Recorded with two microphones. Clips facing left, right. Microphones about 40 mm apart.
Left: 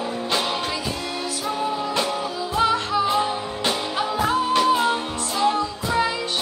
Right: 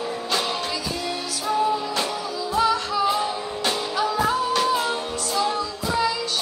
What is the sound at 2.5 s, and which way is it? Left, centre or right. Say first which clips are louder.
Music: left 1 dB; left.